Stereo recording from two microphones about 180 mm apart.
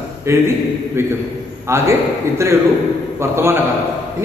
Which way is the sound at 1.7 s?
15° right (ahead or behind).